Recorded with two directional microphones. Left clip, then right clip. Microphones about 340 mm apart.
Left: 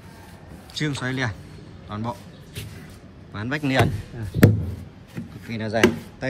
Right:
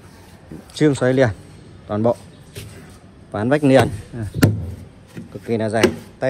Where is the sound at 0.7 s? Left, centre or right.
Centre.